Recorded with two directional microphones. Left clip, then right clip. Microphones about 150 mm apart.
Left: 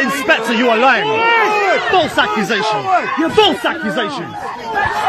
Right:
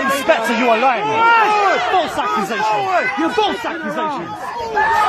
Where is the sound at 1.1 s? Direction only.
30° right (ahead or behind).